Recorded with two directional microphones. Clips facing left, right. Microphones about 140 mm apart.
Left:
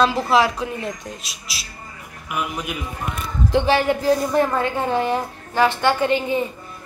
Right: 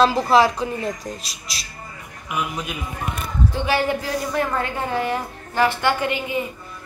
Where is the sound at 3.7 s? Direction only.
25° left (ahead or behind).